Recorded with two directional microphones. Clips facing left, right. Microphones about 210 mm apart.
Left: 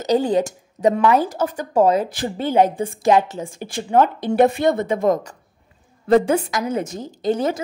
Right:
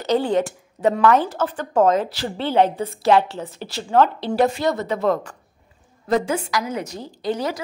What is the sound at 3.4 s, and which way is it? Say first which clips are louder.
A woman's voice: left 3 dB; 50° left (ahead or behind).